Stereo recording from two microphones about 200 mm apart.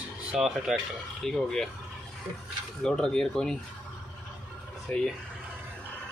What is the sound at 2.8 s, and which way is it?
Speech, 5° left (ahead or behind).